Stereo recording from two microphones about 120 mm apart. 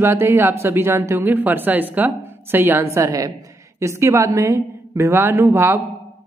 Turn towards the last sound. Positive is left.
turn(degrees=-20)  # may be behind; listen again after turning